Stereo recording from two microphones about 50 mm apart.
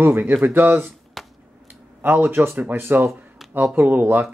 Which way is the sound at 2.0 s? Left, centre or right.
Right.